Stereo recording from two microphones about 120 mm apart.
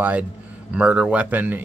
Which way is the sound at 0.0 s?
15° right (ahead or behind).